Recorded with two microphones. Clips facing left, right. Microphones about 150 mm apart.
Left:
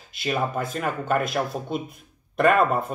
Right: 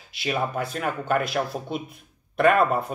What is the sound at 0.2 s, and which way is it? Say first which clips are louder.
Speech: left 1 dB; centre (ahead or behind).